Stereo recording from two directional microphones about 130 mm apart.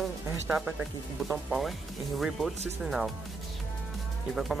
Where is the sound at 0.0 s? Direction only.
5° right (ahead or behind).